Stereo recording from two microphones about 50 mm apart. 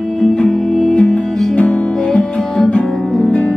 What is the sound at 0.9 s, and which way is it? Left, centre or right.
Music, left.